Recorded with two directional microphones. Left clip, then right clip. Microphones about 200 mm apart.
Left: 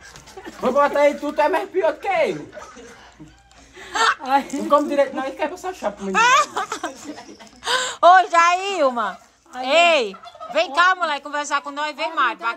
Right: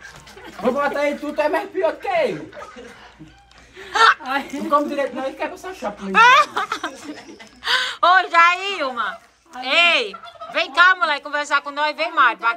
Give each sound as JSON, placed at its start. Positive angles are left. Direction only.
{"t": 0.6, "sound": "speech", "side_deg": 5}
{"t": 3.9, "sound": "chuckle", "side_deg": 5}
{"t": 4.5, "sound": "a woman's voice", "side_deg": 5}